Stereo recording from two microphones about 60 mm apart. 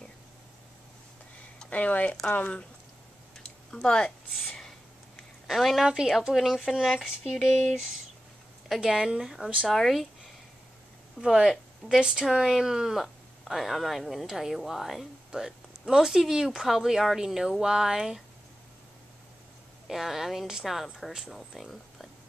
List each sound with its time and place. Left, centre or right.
1.7 s speech: left
3.4 s a sound: centre
5.5 s speech: centre
8.6 s speech: centre
11.1 s speech: centre
19.9 s speech: centre